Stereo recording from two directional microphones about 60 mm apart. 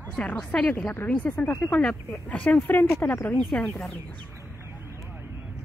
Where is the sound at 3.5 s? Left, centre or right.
Left.